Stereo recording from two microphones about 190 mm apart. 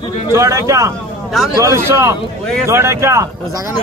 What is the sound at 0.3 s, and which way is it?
A man's voice, 15° right (ahead or behind).